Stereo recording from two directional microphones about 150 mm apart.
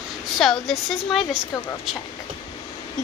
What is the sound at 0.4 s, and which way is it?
Speech, centre (ahead or behind).